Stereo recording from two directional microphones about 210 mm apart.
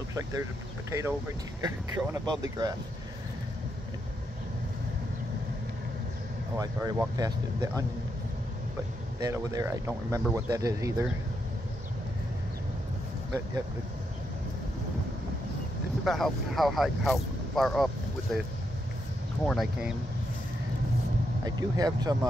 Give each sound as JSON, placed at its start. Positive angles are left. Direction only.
{"t": 0.1, "sound": "speech", "side_deg": -15}
{"t": 6.5, "sound": "speech", "side_deg": -15}
{"t": 9.2, "sound": "speech", "side_deg": -15}
{"t": 16.0, "sound": "speech", "side_deg": 0}
{"t": 21.5, "sound": "speech", "side_deg": -20}